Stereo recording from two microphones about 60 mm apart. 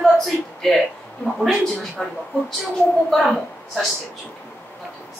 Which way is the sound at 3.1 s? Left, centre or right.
Centre.